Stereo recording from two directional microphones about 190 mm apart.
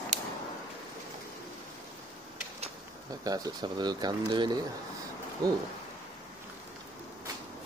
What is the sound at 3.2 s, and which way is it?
Speech, 20° right (ahead or behind).